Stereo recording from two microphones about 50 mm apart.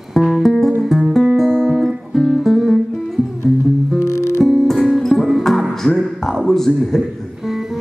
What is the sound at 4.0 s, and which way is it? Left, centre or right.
Music, left.